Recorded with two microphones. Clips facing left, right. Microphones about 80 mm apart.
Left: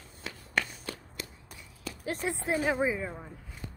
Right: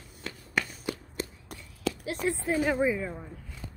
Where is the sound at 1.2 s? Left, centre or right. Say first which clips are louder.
Right 7 dB; right.